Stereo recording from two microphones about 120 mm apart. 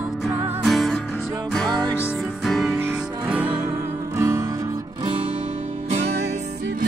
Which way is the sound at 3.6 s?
25° right (ahead or behind).